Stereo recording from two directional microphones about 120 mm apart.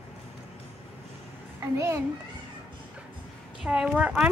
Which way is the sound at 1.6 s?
25° right (ahead or behind).